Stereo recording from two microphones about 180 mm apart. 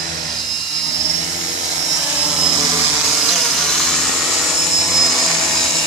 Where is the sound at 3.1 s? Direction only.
Centre (ahead or behind).